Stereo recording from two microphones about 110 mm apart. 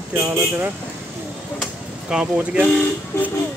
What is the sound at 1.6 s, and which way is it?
Speech, 10° right (ahead or behind).